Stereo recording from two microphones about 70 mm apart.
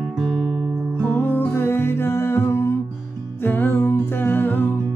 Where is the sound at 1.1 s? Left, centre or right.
Left.